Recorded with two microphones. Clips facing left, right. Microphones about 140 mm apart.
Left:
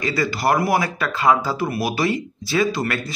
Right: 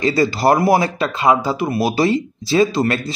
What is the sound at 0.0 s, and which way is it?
Speech, 30° right (ahead or behind).